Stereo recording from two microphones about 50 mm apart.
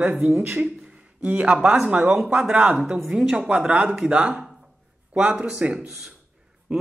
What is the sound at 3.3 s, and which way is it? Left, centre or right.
Speech, centre.